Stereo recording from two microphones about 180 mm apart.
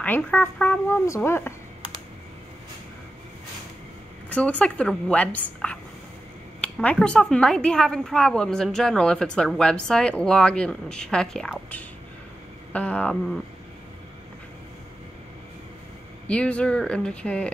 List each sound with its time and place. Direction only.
0.0 s speech: 10° left (ahead or behind)
4.3 s a woman's voice: 5° left (ahead or behind)
12.7 s speech: 5° left (ahead or behind)
16.3 s speech: 5° left (ahead or behind)